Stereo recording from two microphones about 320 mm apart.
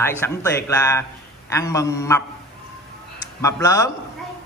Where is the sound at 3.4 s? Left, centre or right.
Centre.